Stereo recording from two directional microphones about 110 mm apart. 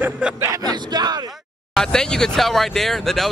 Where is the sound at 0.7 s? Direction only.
40° right (ahead or behind).